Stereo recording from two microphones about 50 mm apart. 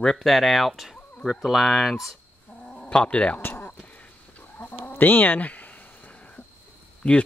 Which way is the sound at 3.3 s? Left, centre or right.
Left.